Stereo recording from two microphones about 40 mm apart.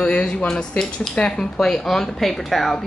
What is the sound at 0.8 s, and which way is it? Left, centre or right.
Speech, centre.